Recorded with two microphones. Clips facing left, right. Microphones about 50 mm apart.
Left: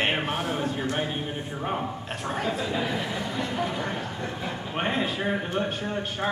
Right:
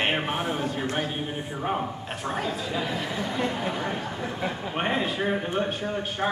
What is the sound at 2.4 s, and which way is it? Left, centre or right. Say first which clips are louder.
Speech: left 1 dB; centre.